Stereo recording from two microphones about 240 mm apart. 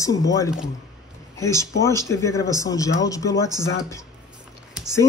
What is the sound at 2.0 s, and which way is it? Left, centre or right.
Speech, centre.